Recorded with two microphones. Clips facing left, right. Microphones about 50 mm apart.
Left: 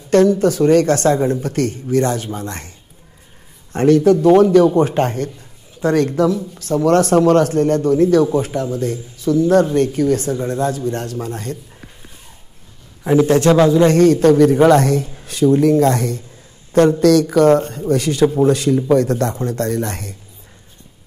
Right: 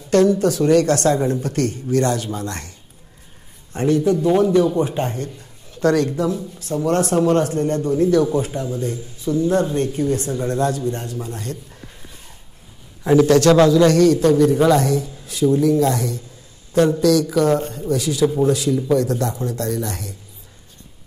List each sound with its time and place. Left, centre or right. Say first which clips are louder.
0.1 s speech: left 3 dB; left
3.7 s a man's voice: left 6 dB; left
4.7 s a man's voice: left 5 dB; left
10.3 s a man's voice: left 1 dB; left
13.0 s a man's voice: even; left